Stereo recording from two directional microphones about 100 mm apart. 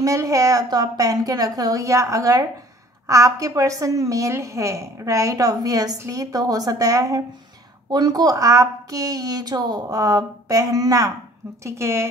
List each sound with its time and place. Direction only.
0.0 s a woman's voice: 35° right (ahead or behind)